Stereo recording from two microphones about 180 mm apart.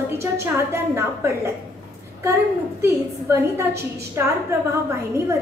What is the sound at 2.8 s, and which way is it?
A woman's voice, 15° right (ahead or behind).